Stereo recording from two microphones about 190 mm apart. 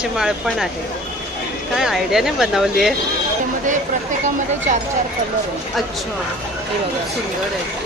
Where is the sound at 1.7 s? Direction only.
Centre (ahead or behind).